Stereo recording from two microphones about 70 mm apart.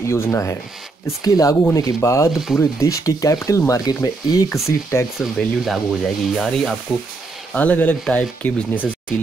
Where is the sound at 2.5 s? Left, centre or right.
Left.